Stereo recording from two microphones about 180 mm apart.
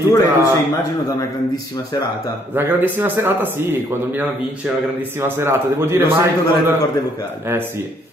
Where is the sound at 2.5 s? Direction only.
10° right (ahead or behind).